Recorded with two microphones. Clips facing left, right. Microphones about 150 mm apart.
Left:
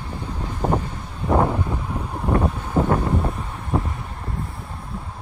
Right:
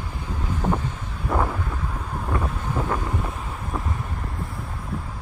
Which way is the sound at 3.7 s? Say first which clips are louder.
Left 8 dB; 30° left (ahead or behind).